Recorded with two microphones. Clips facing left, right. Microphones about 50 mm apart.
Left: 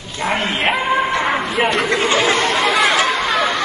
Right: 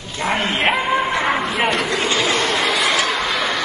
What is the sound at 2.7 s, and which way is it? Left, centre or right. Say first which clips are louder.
Chatter: left 3 dB; left.